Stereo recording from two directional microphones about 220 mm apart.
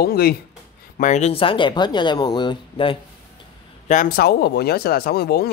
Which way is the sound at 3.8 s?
40° left (ahead or behind).